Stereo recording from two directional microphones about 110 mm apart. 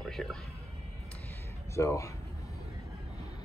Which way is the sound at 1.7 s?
30° left (ahead or behind).